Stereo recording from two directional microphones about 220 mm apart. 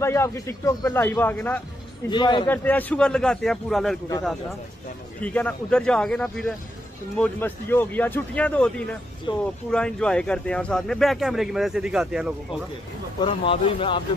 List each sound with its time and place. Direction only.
0.0 s speech: 10° left (ahead or behind)
2.0 s speech: 20° left (ahead or behind)
2.4 s speech: 10° left (ahead or behind)
5.2 s speech: 5° left (ahead or behind)
9.3 s speech: 20° left (ahead or behind)
9.7 s speech: 5° left (ahead or behind)
13.2 s speech: 25° left (ahead or behind)